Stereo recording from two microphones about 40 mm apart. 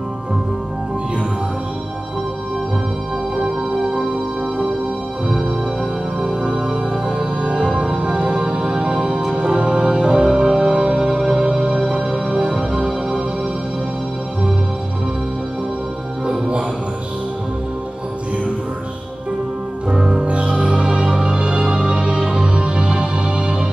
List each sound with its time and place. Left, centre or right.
3.3 s music: centre
6.2 s music: right
16.3 s music: right
19.9 s music: right